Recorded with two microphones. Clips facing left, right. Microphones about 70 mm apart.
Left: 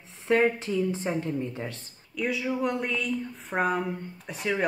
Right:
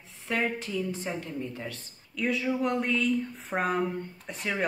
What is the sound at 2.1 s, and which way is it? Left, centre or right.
Speech, centre.